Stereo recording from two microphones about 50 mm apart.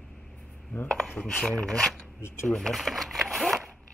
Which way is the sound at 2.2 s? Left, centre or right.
Left.